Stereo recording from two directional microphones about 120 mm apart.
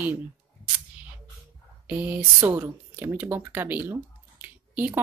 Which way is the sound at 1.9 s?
10° right (ahead or behind).